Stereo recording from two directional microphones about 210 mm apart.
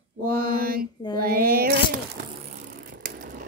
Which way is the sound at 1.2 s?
45° right (ahead or behind).